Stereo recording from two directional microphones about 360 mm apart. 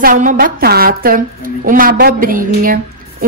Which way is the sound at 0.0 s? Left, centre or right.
Right.